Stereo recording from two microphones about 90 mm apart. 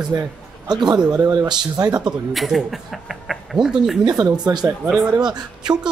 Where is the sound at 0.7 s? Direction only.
55° right (ahead or behind).